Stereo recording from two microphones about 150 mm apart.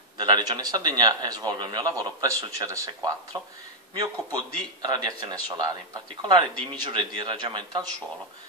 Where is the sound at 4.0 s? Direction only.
30° right (ahead or behind).